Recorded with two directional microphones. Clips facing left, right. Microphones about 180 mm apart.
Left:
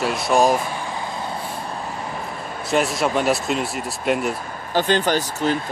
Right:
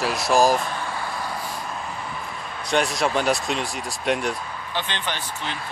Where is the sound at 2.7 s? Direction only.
Centre (ahead or behind).